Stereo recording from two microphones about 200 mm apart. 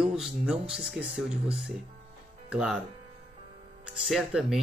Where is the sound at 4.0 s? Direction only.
Centre (ahead or behind).